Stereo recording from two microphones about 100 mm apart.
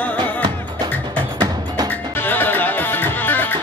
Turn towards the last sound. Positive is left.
turn(degrees=20)  # may be behind; listen again after turning